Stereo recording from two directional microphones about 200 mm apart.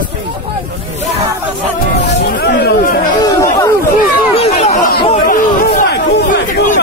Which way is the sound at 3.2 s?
15° left (ahead or behind).